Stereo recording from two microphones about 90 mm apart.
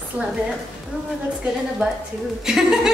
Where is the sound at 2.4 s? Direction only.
5° right (ahead or behind).